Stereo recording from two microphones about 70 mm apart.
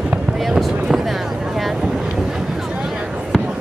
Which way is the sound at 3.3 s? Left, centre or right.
Centre.